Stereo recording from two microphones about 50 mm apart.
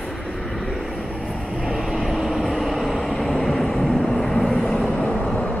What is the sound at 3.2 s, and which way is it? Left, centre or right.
Vehicle, centre.